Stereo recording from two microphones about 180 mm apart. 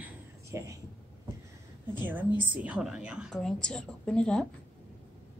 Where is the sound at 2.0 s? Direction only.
10° right (ahead or behind); by 4.4 s 5° left (ahead or behind).